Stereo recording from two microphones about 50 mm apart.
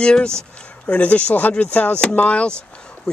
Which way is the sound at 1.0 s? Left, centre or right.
Left.